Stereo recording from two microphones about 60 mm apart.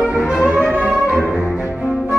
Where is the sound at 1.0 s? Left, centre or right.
Centre.